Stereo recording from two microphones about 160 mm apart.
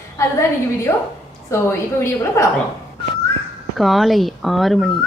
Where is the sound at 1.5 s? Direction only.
15° left (ahead or behind).